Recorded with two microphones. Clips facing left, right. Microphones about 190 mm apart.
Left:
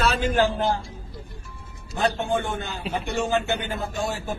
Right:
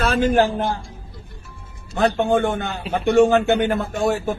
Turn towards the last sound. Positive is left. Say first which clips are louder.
# right 8 dB
turn(degrees=-55)  # may be behind; listen again after turning